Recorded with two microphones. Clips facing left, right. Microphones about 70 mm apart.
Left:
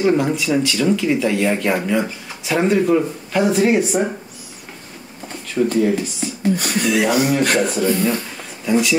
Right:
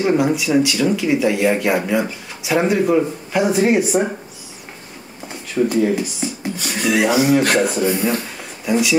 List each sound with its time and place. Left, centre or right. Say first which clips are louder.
0.0 s speech: even; centre
5.7 s speech: even; centre
6.5 s speech: left 4 dB; left
7.0 s speech: right 3 dB; centre
7.6 s speech: even; centre
8.6 s speech: left 1 dB; centre